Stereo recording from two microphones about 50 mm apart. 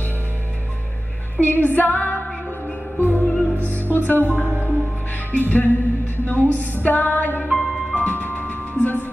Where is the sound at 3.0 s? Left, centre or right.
Right.